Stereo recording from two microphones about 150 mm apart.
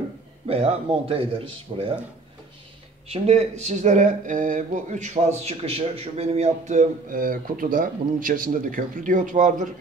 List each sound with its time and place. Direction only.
0.5 s speech: 40° right (ahead or behind)
3.1 s speech: 45° right (ahead or behind)